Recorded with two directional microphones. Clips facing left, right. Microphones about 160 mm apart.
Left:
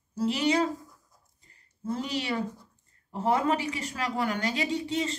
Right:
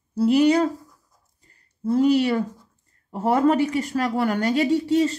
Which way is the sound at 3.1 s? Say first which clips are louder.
Right 7 dB; 45° right (ahead or behind).